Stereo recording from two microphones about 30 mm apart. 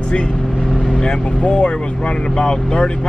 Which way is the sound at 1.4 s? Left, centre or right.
Left.